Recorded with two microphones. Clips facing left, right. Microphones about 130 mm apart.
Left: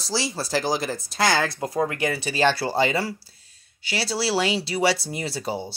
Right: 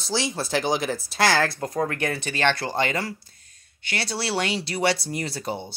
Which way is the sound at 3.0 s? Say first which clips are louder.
Left 3 dB; 10° left (ahead or behind).